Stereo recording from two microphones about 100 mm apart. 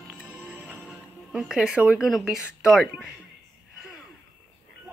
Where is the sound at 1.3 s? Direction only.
5° right (ahead or behind).